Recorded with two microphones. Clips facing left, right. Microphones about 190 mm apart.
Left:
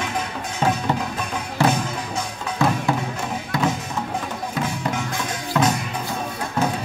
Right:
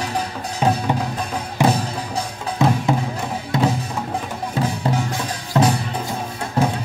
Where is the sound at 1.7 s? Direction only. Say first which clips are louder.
Right 2 dB; 35° right (ahead or behind).